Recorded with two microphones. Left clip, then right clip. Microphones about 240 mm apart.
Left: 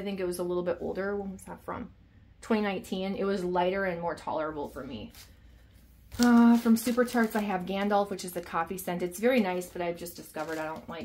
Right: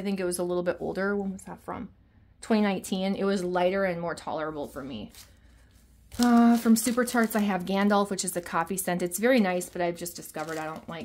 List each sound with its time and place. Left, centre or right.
0.0 s speech: right
6.2 s speech: right